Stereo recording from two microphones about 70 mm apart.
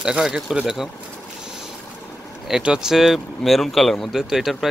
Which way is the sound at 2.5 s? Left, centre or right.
Centre.